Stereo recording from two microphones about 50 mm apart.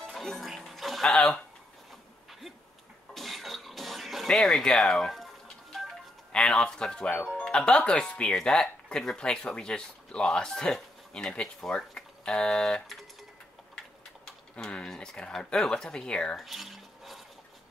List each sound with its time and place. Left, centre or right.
0.1 s music: centre
3.2 s throat clearing: centre
4.3 s a sound: centre
6.3 s speech: centre
14.8 s speech: centre
16.3 s dishes: centre